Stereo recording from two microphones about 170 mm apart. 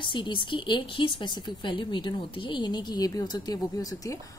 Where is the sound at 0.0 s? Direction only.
30° left (ahead or behind).